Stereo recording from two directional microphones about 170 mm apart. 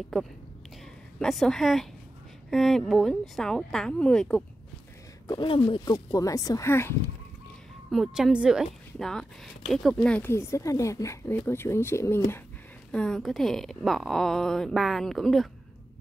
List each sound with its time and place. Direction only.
0.1 s speech: centre (ahead or behind)
5.3 s speech: 30° left (ahead or behind)
7.9 s speech: centre (ahead or behind); by 12.2 s 15° left (ahead or behind)
12.9 s speech: 5° left (ahead or behind)